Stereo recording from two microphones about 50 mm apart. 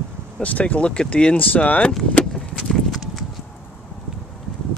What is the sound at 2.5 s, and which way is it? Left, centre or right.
Clip-clop, centre.